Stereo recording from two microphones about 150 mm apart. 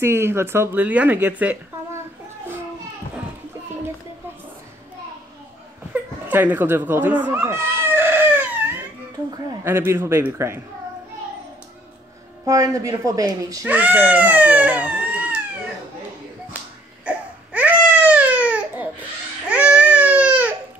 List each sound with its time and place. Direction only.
0.0 s speech: 15° right (ahead or behind)
6.2 s cat: 10° right (ahead or behind)
9.7 s speech: 15° right (ahead or behind)
12.4 s speech: 20° right (ahead or behind)
13.7 s speech: 10° right (ahead or behind)
17.0 s baby cry: 10° right (ahead or behind)